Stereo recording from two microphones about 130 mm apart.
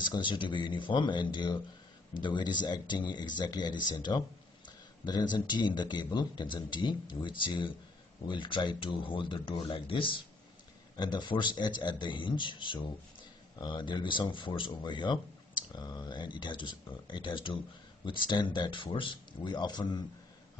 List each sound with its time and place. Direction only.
0.0 s speech: 35° left (ahead or behind)